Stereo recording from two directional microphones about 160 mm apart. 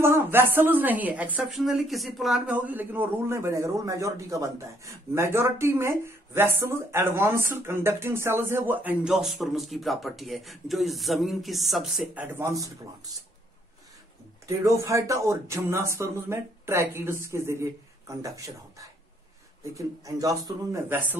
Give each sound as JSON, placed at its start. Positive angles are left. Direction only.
{"t": 0.0, "sound": "a woman's voice", "side_deg": -15}
{"t": 12.3, "sound": "a woman's voice", "side_deg": -15}
{"t": 14.6, "sound": "a woman's voice", "side_deg": -20}